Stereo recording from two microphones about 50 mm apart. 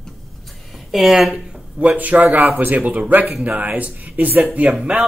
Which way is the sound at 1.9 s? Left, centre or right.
Right.